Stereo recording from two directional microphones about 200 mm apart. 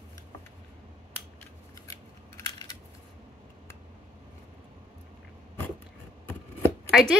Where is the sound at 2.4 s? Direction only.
20° left (ahead or behind).